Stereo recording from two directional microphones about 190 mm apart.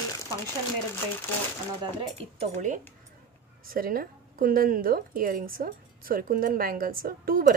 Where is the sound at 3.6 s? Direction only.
50° right (ahead or behind).